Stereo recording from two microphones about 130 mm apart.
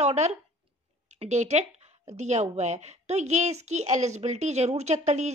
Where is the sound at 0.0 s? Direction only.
60° right (ahead or behind).